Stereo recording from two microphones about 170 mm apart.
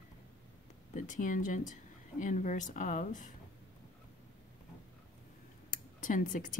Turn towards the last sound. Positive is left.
turn(degrees=50)  # may be behind; listen again after turning